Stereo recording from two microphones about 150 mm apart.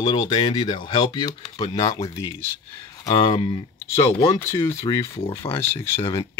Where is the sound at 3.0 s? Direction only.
30° left (ahead or behind).